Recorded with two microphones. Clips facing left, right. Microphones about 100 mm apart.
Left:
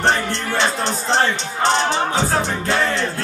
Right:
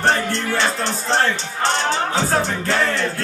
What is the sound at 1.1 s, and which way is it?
Speech, 15° left (ahead or behind).